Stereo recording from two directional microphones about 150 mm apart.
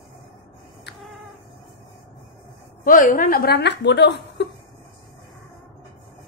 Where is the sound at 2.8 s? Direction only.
65° left (ahead or behind); by 3.6 s 85° left.